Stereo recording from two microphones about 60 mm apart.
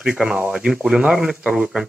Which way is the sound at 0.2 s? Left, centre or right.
Centre.